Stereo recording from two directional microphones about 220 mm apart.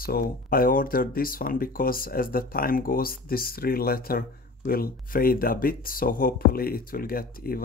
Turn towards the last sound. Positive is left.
turn(degrees=40)  # may be behind; listen again after turning